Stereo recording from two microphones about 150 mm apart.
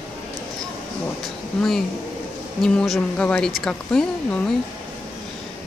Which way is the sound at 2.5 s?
5° left (ahead or behind).